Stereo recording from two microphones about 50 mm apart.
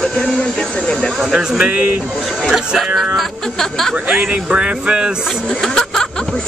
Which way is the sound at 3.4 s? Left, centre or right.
Centre.